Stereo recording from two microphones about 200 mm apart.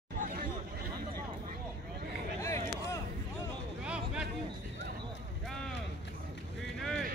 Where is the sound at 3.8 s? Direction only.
5° right (ahead or behind).